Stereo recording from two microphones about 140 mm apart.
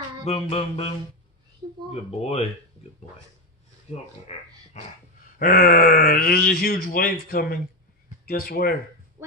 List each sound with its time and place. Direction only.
0.2 s music: 50° left (ahead or behind)
3.9 s speech: 55° left (ahead or behind)
4.3 s music: 55° left (ahead or behind)
4.7 s dog: 55° left (ahead or behind)
5.4 s speech: 70° left (ahead or behind); by 8.7 s 90° left